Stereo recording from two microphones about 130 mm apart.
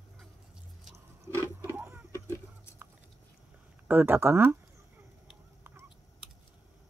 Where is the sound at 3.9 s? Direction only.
15° right (ahead or behind).